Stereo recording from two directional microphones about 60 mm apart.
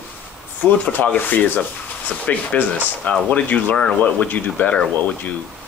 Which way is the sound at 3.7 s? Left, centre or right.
Centre.